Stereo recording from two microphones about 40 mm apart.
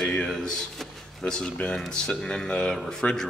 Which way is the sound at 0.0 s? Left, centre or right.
Left.